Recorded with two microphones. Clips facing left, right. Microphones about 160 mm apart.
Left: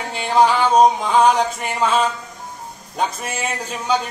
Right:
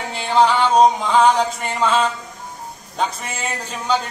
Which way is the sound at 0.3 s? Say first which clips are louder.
Even; 10° left (ahead or behind).